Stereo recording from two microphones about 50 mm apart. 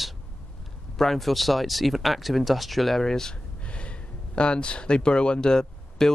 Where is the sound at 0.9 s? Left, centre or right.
Centre.